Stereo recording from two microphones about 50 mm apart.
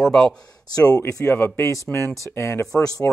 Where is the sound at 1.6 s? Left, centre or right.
Left.